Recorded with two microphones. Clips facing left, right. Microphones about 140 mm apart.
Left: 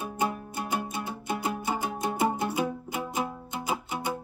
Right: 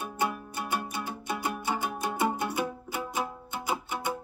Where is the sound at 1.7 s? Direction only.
25° left (ahead or behind).